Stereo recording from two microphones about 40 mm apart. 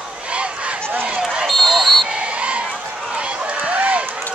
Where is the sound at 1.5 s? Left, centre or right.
Centre.